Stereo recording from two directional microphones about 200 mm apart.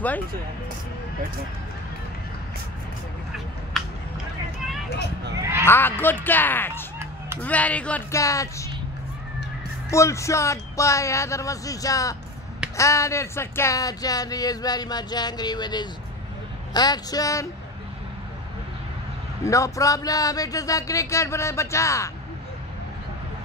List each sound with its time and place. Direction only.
3.8 s a sound: centre (ahead or behind)
5.4 s speech: 10° right (ahead or behind)
5.7 s speech: 10° left (ahead or behind)
9.8 s speech: 15° left (ahead or behind)
19.4 s speech: 15° left (ahead or behind)